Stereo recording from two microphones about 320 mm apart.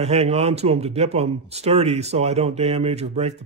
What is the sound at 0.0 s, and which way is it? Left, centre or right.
Speech, centre.